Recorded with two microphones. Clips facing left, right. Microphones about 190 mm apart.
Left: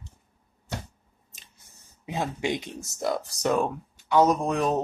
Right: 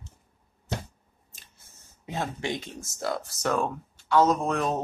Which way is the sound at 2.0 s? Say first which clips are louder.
Left 3 dB; 15° left (ahead or behind).